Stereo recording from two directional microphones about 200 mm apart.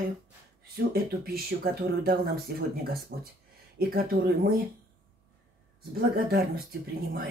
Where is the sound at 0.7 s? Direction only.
50° right (ahead or behind).